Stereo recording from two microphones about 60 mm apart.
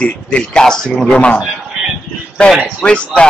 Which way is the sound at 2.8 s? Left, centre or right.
Centre.